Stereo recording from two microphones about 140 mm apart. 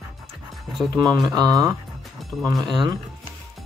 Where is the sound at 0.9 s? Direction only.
25° right (ahead or behind).